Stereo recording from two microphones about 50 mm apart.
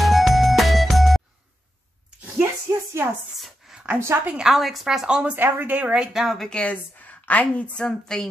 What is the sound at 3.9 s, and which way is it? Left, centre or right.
Speech, right.